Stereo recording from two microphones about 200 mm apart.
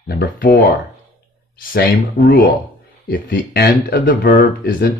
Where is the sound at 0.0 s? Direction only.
50° left (ahead or behind).